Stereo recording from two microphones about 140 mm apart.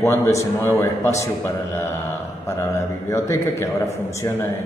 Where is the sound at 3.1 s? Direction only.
20° left (ahead or behind).